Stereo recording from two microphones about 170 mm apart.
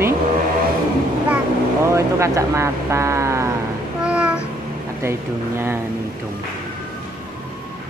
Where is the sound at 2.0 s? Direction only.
15° right (ahead or behind).